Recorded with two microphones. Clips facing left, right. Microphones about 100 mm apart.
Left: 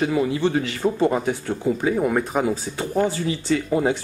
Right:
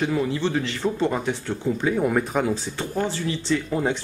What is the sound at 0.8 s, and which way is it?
Speech, 10° left (ahead or behind).